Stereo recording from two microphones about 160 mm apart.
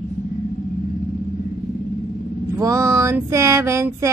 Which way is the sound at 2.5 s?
20° right (ahead or behind).